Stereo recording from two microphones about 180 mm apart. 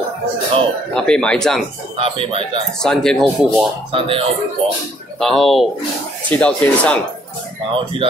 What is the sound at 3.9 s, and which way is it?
Speech, 30° right (ahead or behind).